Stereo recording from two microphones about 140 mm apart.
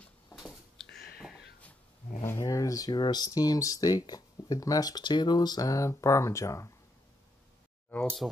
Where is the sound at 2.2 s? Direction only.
20° left (ahead or behind).